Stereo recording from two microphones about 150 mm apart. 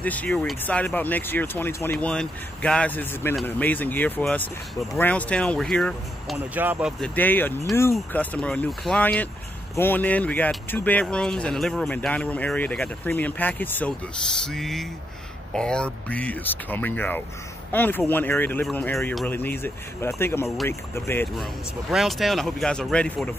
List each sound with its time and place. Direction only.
0.0 s speech: 10° left (ahead or behind)
6.3 s speech: 15° right (ahead or behind)
7.0 s speech: 10° left (ahead or behind)
21.9 s speech: centre (ahead or behind)